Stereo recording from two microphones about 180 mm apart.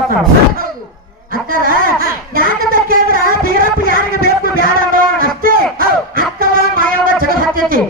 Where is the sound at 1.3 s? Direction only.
50° right (ahead or behind).